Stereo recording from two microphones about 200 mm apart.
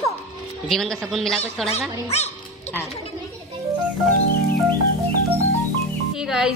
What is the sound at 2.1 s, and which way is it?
Speech, 30° left (ahead or behind).